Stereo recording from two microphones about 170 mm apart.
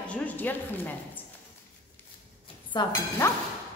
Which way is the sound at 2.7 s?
25° left (ahead or behind).